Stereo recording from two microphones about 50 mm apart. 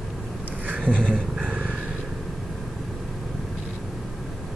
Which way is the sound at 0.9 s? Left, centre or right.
Centre.